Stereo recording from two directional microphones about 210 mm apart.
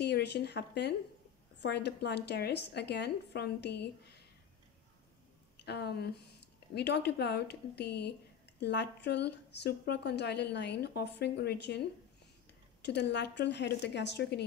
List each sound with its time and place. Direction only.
0.0 s speech: 50° left (ahead or behind)
5.7 s speech: 50° left (ahead or behind)
12.8 s a woman's voice: 55° left (ahead or behind)